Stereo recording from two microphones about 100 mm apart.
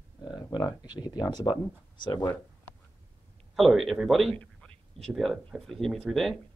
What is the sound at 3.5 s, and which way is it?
Speech, centre (ahead or behind).